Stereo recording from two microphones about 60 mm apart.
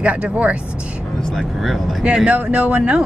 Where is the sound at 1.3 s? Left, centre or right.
Centre.